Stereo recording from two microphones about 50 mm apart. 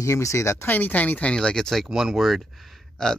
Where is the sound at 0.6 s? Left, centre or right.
Left.